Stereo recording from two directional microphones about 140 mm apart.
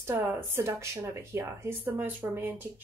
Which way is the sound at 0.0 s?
15° right (ahead or behind).